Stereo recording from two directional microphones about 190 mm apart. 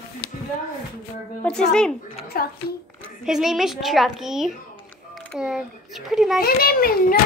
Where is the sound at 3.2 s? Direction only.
Centre (ahead or behind).